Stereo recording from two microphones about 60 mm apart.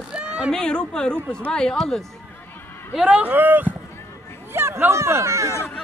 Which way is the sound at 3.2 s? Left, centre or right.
Right.